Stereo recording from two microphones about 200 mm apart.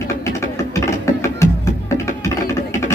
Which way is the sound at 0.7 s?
15° left (ahead or behind).